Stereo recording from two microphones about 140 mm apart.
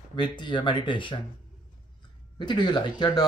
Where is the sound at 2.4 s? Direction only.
30° left (ahead or behind).